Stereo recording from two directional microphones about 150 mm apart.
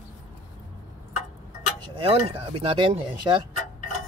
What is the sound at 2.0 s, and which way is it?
Speech, 40° right (ahead or behind).